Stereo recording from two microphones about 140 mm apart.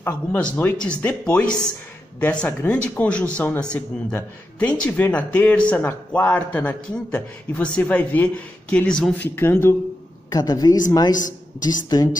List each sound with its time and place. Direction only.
0.0 s speech: 10° left (ahead or behind)
9.3 s speech: 15° left (ahead or behind)
10.3 s a woman's voice: 30° left (ahead or behind)